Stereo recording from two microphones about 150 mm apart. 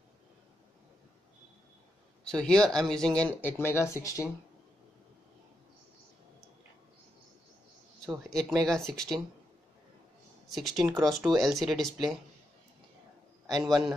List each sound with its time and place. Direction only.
2.2 s speech: 5° left (ahead or behind)
8.0 s speech: 5° left (ahead or behind)
10.5 s speech: centre (ahead or behind)
13.5 s speech: centre (ahead or behind)